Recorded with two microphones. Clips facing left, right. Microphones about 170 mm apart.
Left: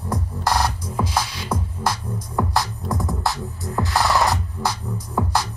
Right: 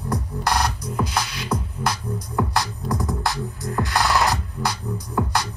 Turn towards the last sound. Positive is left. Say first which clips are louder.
# left 1 dB
turn(degrees=0)  # may be behind; listen again after turning